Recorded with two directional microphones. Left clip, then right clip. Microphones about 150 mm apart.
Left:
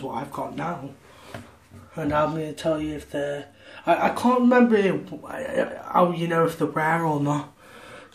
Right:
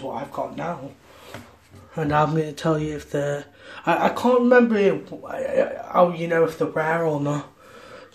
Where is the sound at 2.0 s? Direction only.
35° right (ahead or behind).